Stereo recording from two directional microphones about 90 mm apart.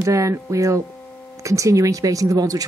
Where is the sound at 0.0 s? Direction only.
35° right (ahead or behind).